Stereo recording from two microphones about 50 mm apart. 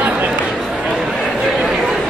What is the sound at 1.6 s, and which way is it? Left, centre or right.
Chatter, centre.